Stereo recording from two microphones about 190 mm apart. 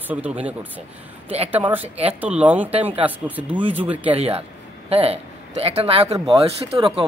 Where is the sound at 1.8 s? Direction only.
30° right (ahead or behind).